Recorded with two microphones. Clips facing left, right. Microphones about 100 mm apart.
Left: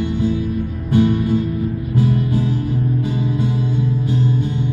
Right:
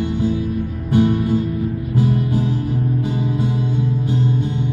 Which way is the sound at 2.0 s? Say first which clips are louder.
Left 1 dB; 20° right (ahead or behind).